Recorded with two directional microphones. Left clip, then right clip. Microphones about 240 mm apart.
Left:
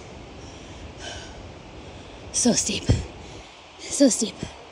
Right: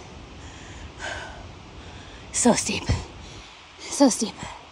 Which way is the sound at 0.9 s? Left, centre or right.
Right.